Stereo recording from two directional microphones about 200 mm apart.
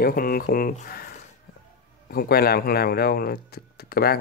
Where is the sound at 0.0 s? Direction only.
45° left (ahead or behind).